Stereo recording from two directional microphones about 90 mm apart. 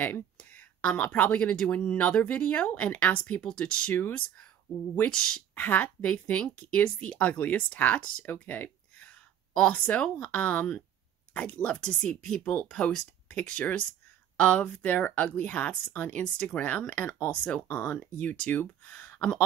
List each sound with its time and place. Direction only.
0.0 s a woman's voice: 20° left (ahead or behind)
3.9 s a woman's voice: 25° left (ahead or behind)
17.9 s a woman's voice: 15° left (ahead or behind)